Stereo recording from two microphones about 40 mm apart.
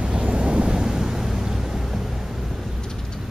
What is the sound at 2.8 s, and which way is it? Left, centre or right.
Vehicle, centre.